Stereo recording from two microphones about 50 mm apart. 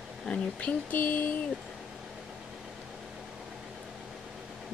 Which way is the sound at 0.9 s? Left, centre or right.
Left.